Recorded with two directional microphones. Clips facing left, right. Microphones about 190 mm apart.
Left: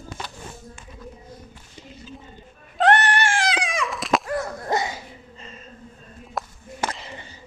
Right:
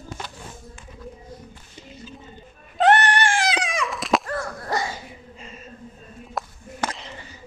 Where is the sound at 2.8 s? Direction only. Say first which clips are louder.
Right 1 dB; centre (ahead or behind).